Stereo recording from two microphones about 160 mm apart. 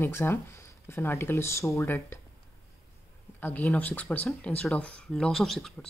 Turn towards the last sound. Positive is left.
turn(degrees=0)  # may be behind; listen again after turning